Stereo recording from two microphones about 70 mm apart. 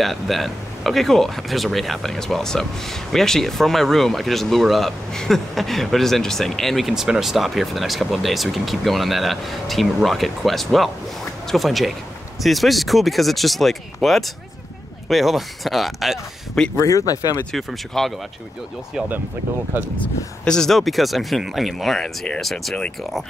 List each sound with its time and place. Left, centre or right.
0.0 s speech: centre
6.9 s speech: centre
16.8 s speech: left
17.5 s speech: centre
20.4 s speech: centre